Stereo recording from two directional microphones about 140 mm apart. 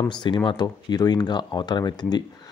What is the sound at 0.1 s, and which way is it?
Speech, 35° left (ahead or behind).